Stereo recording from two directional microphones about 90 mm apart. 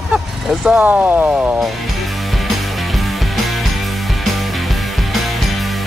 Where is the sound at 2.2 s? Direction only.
Centre (ahead or behind).